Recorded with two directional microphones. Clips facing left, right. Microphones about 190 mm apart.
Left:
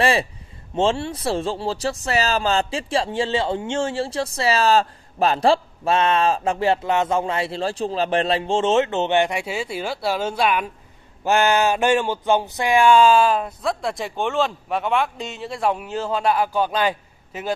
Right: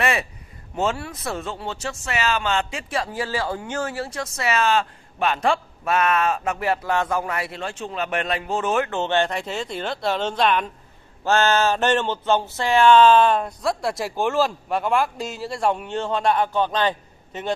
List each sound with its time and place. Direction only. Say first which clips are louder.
0.0 s speech: left 4 dB; 30° left (ahead or behind); by 17.6 s 5° left (ahead or behind)